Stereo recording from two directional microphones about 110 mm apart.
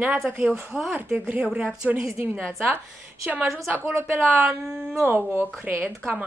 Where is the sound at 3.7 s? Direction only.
20° right (ahead or behind).